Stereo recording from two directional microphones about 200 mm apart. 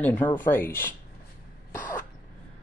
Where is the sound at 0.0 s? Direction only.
10° left (ahead or behind).